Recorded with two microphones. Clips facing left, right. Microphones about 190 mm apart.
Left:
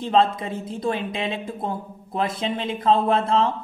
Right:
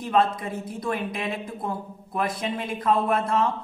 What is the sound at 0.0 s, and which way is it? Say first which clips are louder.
Speech: left 3 dB; 25° left (ahead or behind).